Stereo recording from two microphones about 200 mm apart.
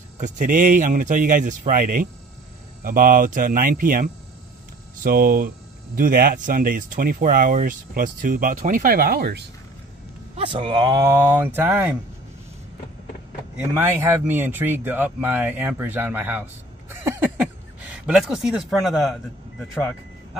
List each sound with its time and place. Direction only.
0.2 s a man's voice: 40° right (ahead or behind)
10.3 s speech: 25° right (ahead or behind); by 11.9 s 10° right (ahead or behind)
13.6 s speech: 10° right (ahead or behind)
16.9 s a sound: 10° right (ahead or behind)
18.0 s speech: centre (ahead or behind)